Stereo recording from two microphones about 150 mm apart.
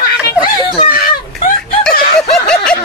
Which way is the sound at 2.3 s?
5° left (ahead or behind).